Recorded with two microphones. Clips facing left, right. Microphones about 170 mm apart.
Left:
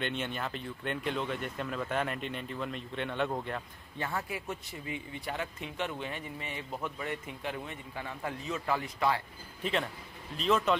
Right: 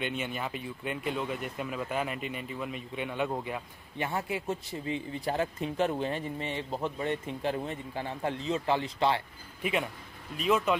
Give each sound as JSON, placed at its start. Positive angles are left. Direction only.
{"t": 0.0, "sound": "speech", "side_deg": -5}
{"t": 4.0, "sound": "speech", "side_deg": -25}
{"t": 9.6, "sound": "speech", "side_deg": -10}